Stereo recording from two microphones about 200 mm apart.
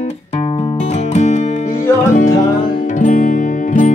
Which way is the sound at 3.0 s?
40° left (ahead or behind).